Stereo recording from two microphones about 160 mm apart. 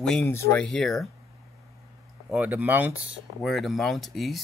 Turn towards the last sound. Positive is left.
turn(degrees=0)  # may be behind; listen again after turning